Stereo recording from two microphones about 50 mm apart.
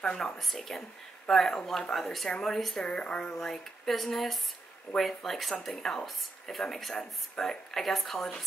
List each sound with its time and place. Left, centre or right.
0.2 s speech: centre